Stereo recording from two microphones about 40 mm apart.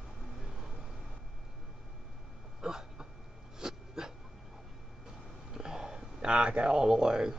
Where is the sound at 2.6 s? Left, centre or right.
Centre.